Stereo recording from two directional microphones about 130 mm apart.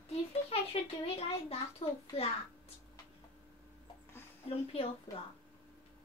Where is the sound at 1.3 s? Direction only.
45° left (ahead or behind).